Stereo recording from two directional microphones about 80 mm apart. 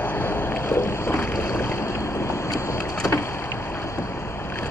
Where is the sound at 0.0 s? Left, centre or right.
Left.